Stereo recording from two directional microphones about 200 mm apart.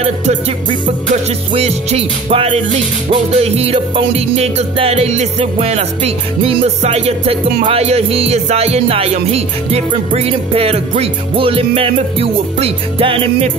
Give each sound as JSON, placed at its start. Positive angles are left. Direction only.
{"t": 0.0, "sound": "music", "side_deg": -35}
{"t": 1.5, "sound": "music", "side_deg": -30}
{"t": 7.6, "sound": "speech", "side_deg": -30}